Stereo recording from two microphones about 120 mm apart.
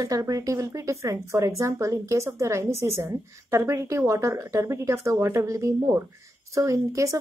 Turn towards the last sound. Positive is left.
turn(degrees=-25)  # may be behind; listen again after turning